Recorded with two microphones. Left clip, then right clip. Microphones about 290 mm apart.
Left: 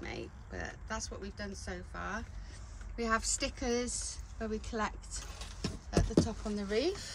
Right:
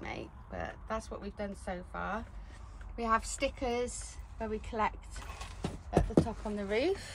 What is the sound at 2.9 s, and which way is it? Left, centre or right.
A woman's voice, centre.